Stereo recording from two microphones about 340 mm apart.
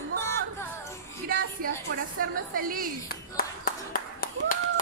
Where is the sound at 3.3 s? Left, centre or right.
Left.